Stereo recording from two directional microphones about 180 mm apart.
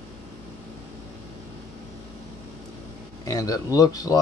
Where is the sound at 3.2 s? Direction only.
20° left (ahead or behind).